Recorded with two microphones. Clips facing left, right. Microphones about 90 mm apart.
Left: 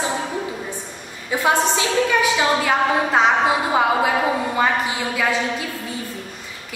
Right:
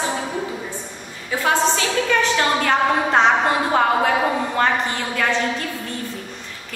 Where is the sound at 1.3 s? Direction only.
15° left (ahead or behind).